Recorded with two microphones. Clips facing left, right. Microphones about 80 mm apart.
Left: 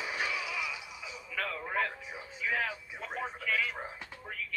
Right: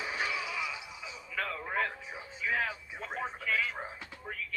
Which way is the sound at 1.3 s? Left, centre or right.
Centre.